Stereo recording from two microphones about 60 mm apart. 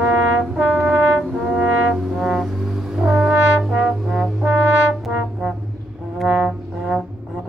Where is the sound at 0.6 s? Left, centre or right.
Right.